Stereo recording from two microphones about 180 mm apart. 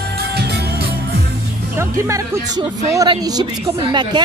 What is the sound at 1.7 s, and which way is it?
A woman's voice, 15° right (ahead or behind).